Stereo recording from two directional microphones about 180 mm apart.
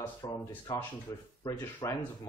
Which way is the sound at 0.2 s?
20° left (ahead or behind).